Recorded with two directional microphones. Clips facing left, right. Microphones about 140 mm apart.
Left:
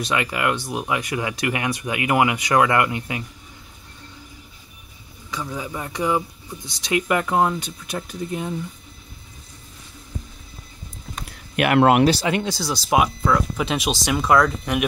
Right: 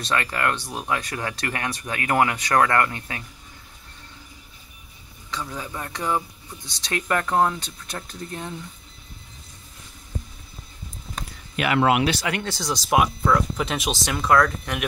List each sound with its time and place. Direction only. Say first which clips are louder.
0.0 s speech: left 2 dB; 10° left (ahead or behind)
5.3 s speech: left 3 dB; 10° left (ahead or behind)
11.5 s speech: left 4 dB; 55° left (ahead or behind)
12.2 s speech: left 5 dB; 25° left (ahead or behind)
12.4 s speech: left 2 dB; 10° left (ahead or behind)